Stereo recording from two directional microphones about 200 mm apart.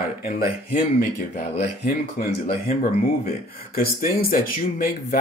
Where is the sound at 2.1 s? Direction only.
45° left (ahead or behind).